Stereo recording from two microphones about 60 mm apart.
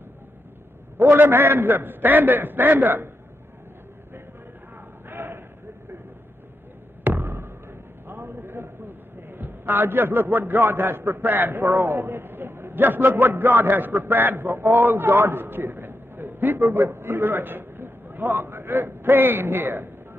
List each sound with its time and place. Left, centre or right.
0.9 s a man's voice: right
5.1 s a sound: right
7.1 s basketball bounce: right
8.1 s a man's voice: right